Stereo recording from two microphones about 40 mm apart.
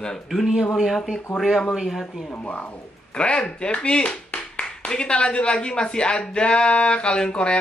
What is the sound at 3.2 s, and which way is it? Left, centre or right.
Speech, left.